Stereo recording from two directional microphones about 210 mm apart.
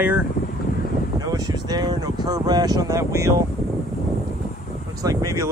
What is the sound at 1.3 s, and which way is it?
Speech, 20° right (ahead or behind).